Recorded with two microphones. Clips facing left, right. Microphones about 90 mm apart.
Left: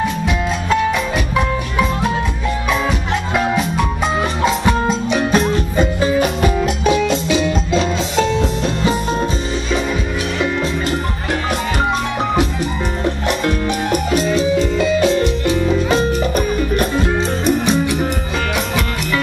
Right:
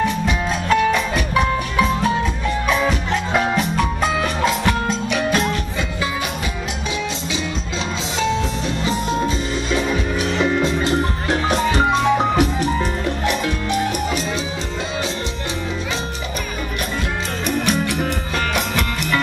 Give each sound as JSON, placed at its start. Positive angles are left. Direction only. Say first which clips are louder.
{"t": 1.8, "sound": "music", "louder": "even", "side_deg": 5}
{"t": 3.3, "sound": "music", "louder": "left 2 dB", "side_deg": 10}
{"t": 5.1, "sound": "music", "louder": "left 4 dB", "side_deg": 30}
{"t": 6.1, "sound": "music", "louder": "left 9 dB", "side_deg": 50}
{"t": 14.1, "sound": "music", "louder": "left 9 dB", "side_deg": 55}